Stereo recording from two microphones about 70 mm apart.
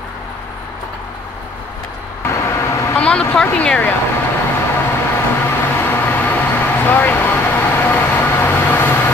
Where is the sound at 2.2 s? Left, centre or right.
Left.